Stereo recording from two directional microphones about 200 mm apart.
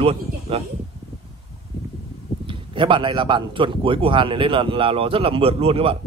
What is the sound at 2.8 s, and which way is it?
Speech, 25° right (ahead or behind).